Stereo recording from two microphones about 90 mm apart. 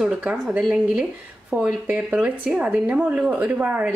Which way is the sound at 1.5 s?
15° right (ahead or behind).